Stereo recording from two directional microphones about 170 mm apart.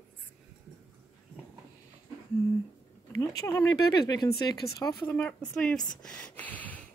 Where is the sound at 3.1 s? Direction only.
15° left (ahead or behind).